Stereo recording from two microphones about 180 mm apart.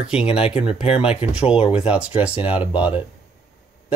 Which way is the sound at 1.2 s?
35° left (ahead or behind).